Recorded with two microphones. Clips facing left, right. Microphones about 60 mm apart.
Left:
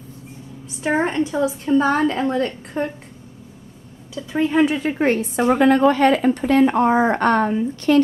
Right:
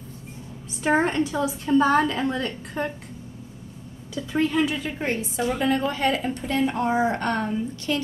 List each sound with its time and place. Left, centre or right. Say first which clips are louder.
0.8 s a woman's voice: left 1 dB; centre
1.2 s a woman's voice: left 4 dB; left
1.8 s a woman's voice: left 1 dB; left
4.4 s a woman's voice: left 5 dB; left
4.9 s a woman's voice: left 8 dB; left
6.7 s a woman's voice: left 6 dB; left